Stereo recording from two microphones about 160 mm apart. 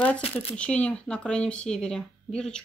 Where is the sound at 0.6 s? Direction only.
5° left (ahead or behind).